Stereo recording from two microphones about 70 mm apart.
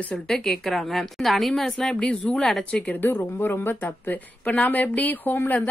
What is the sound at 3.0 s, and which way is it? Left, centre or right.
Speech, left.